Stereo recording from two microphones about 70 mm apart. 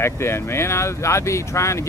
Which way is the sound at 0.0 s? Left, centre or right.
Left.